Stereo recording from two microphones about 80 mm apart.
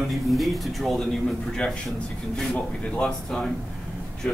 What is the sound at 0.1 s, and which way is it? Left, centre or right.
A man's voice, centre.